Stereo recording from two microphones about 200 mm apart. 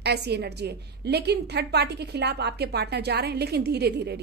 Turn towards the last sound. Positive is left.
turn(degrees=-55)  # may be behind; listen again after turning